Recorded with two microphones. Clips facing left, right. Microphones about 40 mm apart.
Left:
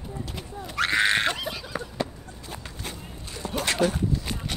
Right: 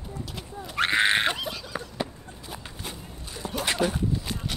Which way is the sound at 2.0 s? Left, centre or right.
Centre.